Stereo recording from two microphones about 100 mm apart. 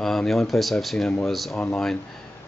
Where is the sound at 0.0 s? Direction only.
5° left (ahead or behind).